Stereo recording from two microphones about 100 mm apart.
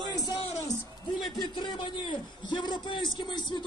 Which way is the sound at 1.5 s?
55° left (ahead or behind).